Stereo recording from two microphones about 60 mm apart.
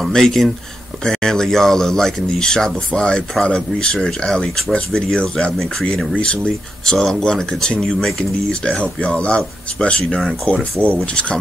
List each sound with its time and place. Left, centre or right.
0.0 s speech: centre